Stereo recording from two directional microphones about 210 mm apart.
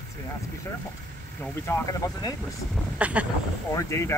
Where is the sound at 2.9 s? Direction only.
5° right (ahead or behind).